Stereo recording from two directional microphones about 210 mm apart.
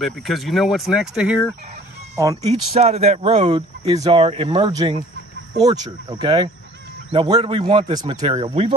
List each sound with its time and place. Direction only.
0.0 s speech: centre (ahead or behind)
2.4 s speech: 30° right (ahead or behind)